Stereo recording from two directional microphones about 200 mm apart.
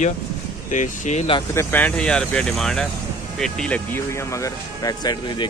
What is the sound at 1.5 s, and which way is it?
Speech, 10° left (ahead or behind).